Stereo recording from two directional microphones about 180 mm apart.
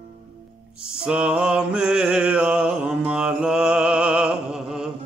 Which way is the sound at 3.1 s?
5° right (ahead or behind).